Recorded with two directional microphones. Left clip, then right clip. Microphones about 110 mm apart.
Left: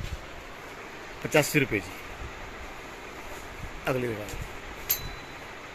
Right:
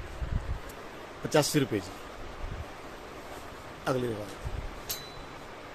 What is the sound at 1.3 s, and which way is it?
Speech, 15° right (ahead or behind).